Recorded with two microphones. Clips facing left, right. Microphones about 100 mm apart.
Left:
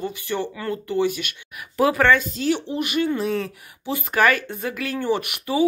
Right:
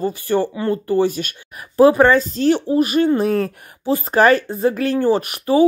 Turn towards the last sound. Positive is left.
turn(degrees=-40)  # may be behind; listen again after turning